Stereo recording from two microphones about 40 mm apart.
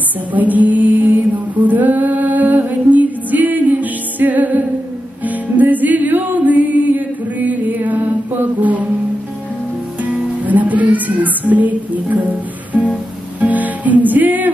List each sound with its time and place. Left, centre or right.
0.3 s music: right
10.0 s music: right